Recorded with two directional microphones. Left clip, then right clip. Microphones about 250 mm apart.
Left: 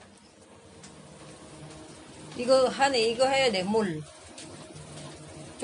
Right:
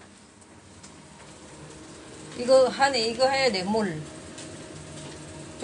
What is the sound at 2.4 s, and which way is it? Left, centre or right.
A woman's voice, left.